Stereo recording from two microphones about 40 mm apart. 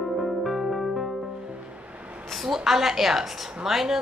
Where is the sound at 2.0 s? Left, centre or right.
Right.